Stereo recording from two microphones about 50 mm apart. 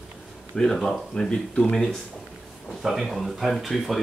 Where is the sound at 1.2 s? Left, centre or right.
Centre.